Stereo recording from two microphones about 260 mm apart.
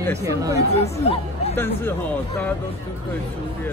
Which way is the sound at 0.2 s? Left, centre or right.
Centre.